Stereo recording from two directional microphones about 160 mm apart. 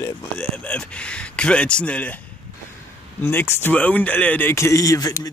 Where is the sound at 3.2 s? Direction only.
15° left (ahead or behind).